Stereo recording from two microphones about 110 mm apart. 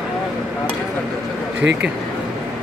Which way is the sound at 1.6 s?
15° right (ahead or behind).